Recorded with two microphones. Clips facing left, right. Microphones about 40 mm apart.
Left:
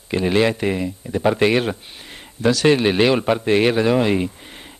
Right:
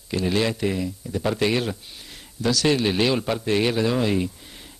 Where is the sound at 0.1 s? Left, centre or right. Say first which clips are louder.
Left 5 dB; left.